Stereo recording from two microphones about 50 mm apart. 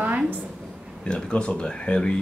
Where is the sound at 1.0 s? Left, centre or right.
Centre.